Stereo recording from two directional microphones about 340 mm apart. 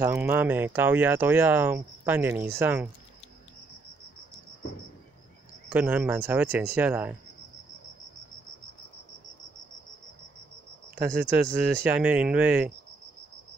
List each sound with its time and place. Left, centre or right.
0.0 s speech: centre
5.7 s speech: centre
11.3 s speech: centre